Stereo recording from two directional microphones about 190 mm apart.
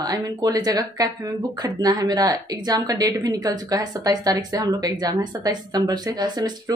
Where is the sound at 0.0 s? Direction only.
20° right (ahead or behind).